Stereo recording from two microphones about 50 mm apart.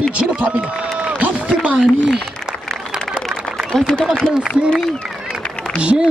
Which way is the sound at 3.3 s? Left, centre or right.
Centre.